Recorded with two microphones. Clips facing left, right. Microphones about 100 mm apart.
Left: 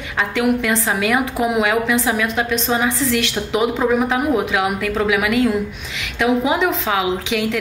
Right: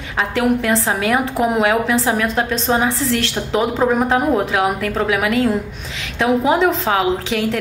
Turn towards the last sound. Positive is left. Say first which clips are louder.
# right 1 dB
turn(degrees=-40)  # may be behind; listen again after turning